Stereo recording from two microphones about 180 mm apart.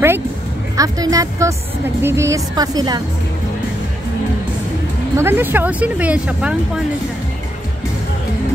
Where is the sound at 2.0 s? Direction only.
15° right (ahead or behind).